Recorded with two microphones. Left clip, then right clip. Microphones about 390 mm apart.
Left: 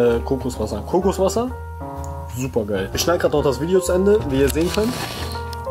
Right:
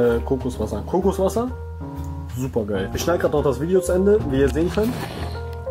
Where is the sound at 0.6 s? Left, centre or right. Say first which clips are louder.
Left 3 dB; centre.